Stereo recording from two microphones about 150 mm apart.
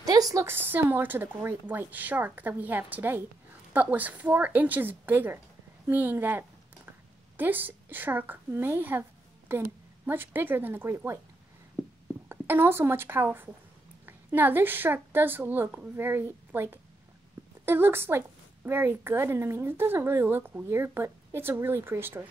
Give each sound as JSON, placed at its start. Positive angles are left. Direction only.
{"t": 0.0, "sound": "a woman's voice", "side_deg": -25}
{"t": 12.3, "sound": "a woman's voice", "side_deg": -15}